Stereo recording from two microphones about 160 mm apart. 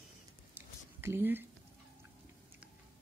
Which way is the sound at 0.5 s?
15° right (ahead or behind).